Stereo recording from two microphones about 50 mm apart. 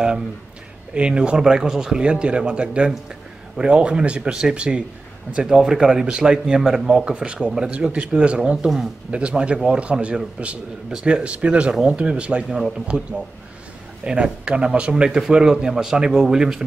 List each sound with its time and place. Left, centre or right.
0.9 s speech: right
14.0 s speech: centre